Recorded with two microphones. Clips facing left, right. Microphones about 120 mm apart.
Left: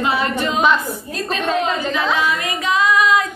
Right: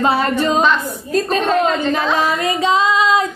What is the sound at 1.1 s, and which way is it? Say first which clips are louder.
Speech: right 8 dB; 35° right (ahead or behind).